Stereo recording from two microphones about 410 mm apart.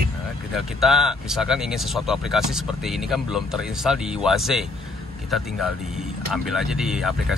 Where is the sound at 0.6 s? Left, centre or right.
Centre.